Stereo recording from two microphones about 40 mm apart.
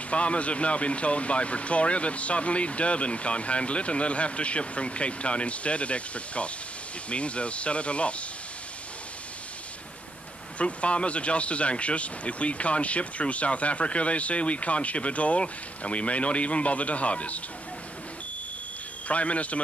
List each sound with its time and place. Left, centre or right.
0.1 s speech: left
10.6 s speech: left
19.0 s speech: left